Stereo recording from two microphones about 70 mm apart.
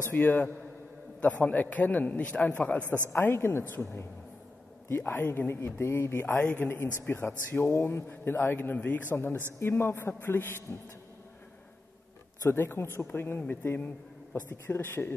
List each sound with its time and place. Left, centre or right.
0.1 s a man's voice: left
3.1 s a man's voice: left
12.4 s a man's voice: left